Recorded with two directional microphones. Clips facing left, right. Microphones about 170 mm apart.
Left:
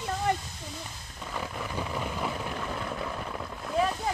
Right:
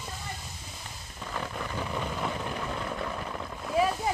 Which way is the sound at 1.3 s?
5° left (ahead or behind).